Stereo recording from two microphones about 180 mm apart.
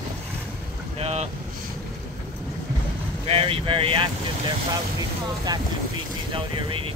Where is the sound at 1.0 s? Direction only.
35° right (ahead or behind).